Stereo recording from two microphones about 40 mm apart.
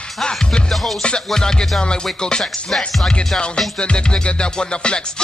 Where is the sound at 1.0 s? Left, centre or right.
Left.